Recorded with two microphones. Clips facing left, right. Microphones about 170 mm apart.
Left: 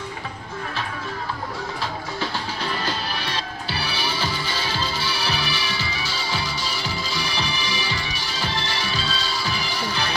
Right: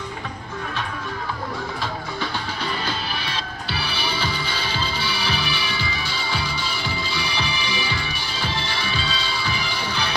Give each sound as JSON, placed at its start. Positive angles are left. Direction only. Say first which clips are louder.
{"t": 2.8, "sound": "music", "louder": "left 1 dB", "side_deg": 40}
{"t": 4.1, "sound": "music", "louder": "right 1 dB", "side_deg": 5}
{"t": 5.2, "sound": "music", "louder": "even", "side_deg": 40}